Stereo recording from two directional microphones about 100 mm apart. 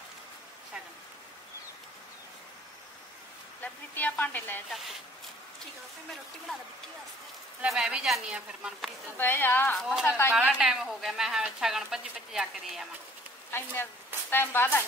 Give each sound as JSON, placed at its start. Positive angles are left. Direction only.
{"t": 3.6, "sound": "a woman's voice", "side_deg": 20}
{"t": 4.6, "sound": "speech", "side_deg": 0}
{"t": 7.6, "sound": "a woman's voice", "side_deg": -5}
{"t": 9.2, "sound": "a woman's voice", "side_deg": 20}
{"t": 9.8, "sound": "speech", "side_deg": 5}
{"t": 10.0, "sound": "a woman's voice", "side_deg": 25}
{"t": 10.6, "sound": "speech", "side_deg": -5}
{"t": 13.5, "sound": "a woman's voice", "side_deg": 25}